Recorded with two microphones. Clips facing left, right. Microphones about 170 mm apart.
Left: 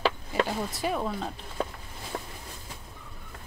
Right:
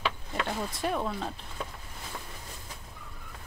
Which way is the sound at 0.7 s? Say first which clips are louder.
Even; centre (ahead or behind).